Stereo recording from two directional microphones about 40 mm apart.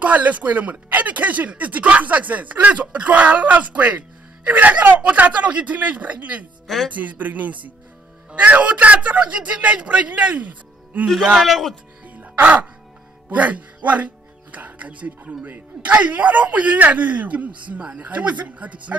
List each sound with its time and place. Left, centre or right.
0.0 s speech: right
11.4 s speech: centre
12.2 s music: right
13.3 s speech: right